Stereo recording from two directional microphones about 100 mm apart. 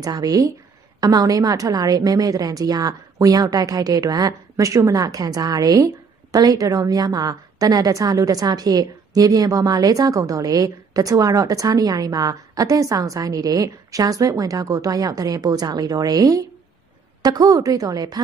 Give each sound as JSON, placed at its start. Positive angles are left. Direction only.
{"t": 0.0, "sound": "a woman's voice", "side_deg": -40}